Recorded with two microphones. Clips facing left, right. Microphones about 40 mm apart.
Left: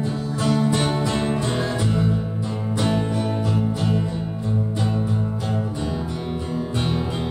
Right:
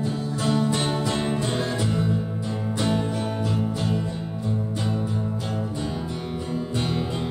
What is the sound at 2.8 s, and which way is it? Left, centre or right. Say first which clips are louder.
Music: left 2 dB; left.